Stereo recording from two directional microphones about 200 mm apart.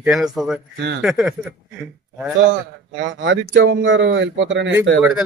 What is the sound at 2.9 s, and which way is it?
Speech, 65° right (ahead or behind).